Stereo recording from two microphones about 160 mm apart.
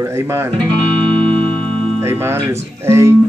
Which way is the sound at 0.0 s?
15° right (ahead or behind).